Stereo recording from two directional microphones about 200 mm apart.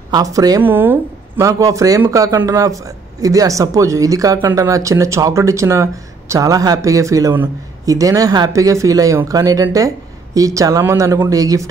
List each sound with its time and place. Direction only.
0.1 s speech: 15° right (ahead or behind)